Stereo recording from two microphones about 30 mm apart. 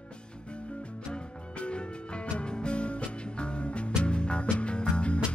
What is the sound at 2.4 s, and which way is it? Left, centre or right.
Music, left.